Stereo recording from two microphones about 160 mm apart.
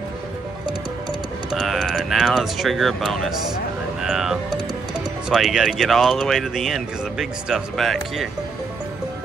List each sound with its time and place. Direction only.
1.5 s speech: centre (ahead or behind)